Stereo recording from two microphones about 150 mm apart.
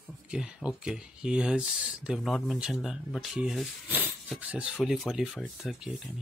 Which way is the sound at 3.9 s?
10° right (ahead or behind).